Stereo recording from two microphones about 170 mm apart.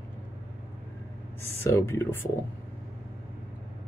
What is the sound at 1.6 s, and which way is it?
Speech, 15° left (ahead or behind).